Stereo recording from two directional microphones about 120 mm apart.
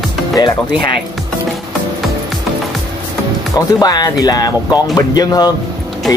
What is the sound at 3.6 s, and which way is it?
Speech, 30° left (ahead or behind).